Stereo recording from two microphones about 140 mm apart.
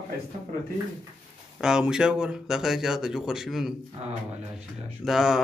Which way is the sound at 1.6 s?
5° right (ahead or behind).